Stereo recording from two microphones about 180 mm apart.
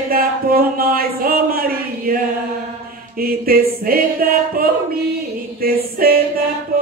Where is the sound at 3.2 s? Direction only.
55° right (ahead or behind).